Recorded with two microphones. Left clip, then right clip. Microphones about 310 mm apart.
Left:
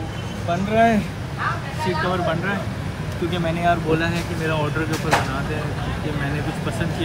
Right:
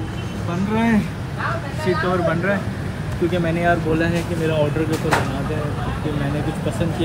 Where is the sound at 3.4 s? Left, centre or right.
Left.